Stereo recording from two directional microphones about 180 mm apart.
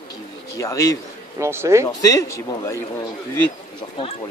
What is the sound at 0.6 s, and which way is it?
Speech, 15° left (ahead or behind).